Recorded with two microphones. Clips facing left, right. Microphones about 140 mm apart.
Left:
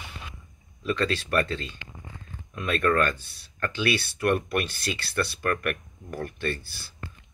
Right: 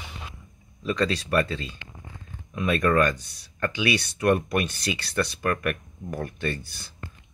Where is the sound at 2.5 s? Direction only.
10° right (ahead or behind).